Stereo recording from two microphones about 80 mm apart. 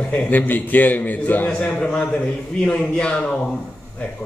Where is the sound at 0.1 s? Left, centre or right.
Left.